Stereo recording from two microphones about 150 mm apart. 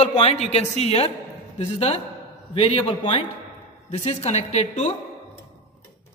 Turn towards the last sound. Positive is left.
turn(degrees=50)  # may be behind; listen again after turning